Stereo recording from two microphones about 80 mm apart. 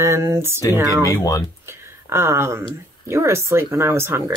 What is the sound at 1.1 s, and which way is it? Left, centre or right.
Speech, left.